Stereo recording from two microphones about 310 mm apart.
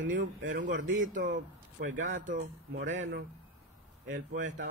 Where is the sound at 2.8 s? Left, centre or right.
Right.